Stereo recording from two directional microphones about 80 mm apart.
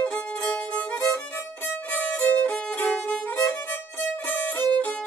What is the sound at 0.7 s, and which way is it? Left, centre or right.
Music, centre.